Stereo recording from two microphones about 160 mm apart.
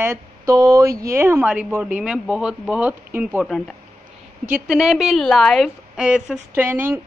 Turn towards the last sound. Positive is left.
turn(degrees=-10)  # may be behind; listen again after turning